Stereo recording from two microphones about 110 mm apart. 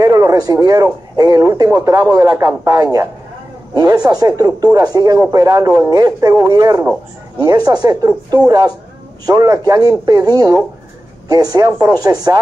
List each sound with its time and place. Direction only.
0.0 s speech: 30° right (ahead or behind)